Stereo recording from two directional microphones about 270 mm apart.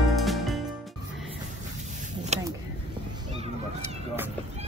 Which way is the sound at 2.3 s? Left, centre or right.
Right.